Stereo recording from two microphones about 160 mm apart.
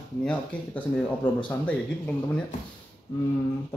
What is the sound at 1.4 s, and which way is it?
Speech, 10° left (ahead or behind).